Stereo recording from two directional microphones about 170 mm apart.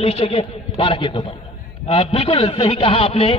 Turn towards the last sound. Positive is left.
turn(degrees=35)  # may be behind; listen again after turning